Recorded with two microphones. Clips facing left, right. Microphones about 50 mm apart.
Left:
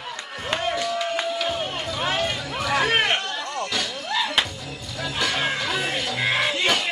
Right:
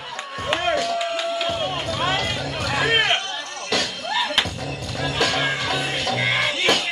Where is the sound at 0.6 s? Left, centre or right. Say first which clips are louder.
Right 4 dB; right.